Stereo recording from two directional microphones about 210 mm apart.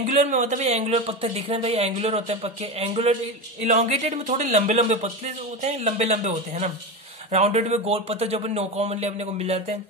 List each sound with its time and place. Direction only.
0.0 s speech: 35° right (ahead or behind)